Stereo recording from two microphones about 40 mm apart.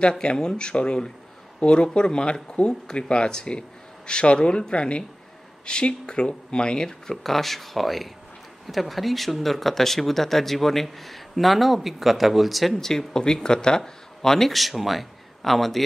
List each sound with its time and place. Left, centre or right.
0.2 s speech: left
7.2 s speech: centre
12.8 s speech: centre
14.5 s a man's voice: centre